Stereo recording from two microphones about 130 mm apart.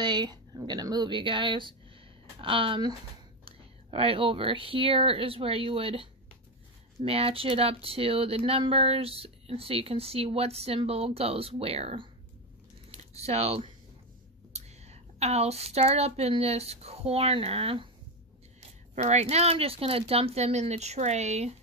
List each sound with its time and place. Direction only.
0.0 s speech: 35° right (ahead or behind)
18.9 s speech: 60° right (ahead or behind)